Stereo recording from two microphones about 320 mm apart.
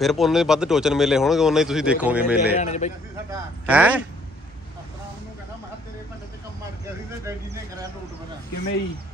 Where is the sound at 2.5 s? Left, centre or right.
Left.